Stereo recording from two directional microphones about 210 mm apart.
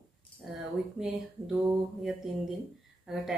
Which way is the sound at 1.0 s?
Centre (ahead or behind).